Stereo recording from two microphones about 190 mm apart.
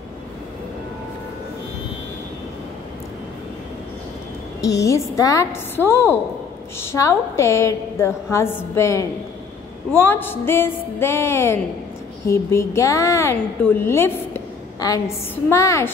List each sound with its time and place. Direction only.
4.6 s a woman's voice: 15° left (ahead or behind)